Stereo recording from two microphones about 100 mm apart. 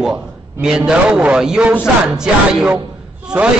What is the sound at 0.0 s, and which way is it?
A man's voice, 10° right (ahead or behind).